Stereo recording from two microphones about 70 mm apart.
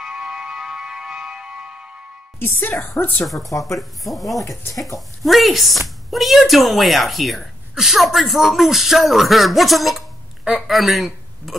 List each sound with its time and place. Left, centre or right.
0.0 s music: centre
2.3 s speech: left
3.4 s speech: left
3.7 s a woman's voice: centre
4.4 s speech: left
4.7 s speech: centre